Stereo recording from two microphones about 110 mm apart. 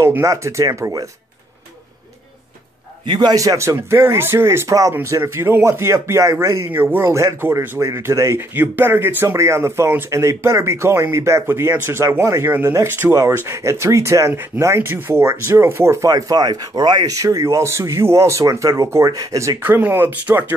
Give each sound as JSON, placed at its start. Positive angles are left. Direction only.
{"t": 0.0, "sound": "speech", "side_deg": -25}
{"t": 3.1, "sound": "speech", "side_deg": -40}
{"t": 19.6, "sound": "speech", "side_deg": -20}